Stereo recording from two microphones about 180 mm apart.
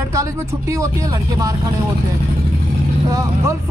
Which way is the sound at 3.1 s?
15° right (ahead or behind).